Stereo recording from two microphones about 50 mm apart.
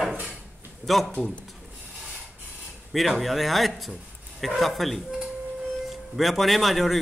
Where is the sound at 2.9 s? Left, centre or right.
Centre.